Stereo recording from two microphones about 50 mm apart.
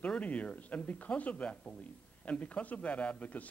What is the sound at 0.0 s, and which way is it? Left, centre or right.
Speech, left.